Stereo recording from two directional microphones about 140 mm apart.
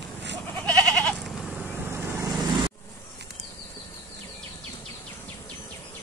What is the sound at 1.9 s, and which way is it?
Vehicle, 15° right (ahead or behind).